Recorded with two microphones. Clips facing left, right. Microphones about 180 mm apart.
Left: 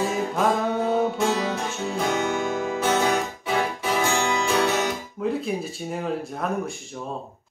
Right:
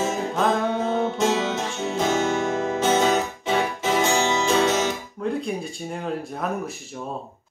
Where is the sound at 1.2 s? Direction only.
25° right (ahead or behind).